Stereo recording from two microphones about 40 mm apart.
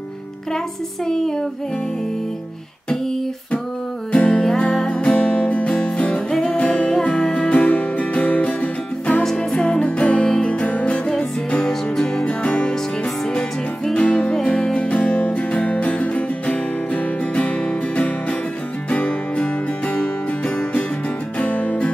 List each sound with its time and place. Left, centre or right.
1.0 s a sound: centre
4.1 s music: left
4.7 s music: centre
5.0 s music: left
7.0 s music: left
7.5 s music: left
9.4 s music: left
11.6 s music: left
13.9 s music: left
19.0 s music: left